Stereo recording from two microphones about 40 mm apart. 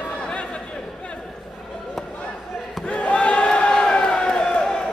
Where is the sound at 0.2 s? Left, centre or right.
Left.